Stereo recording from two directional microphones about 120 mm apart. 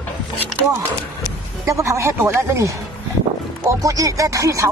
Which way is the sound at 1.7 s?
25° right (ahead or behind).